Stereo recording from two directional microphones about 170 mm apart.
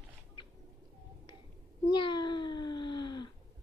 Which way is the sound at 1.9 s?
25° left (ahead or behind).